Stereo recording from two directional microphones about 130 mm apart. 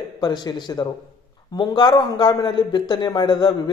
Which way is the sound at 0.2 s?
35° left (ahead or behind).